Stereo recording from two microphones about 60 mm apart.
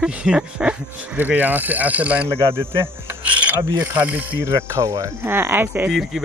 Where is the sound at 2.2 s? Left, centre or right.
Right.